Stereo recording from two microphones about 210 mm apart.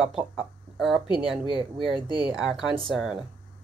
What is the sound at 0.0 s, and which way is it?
Speech, centre (ahead or behind).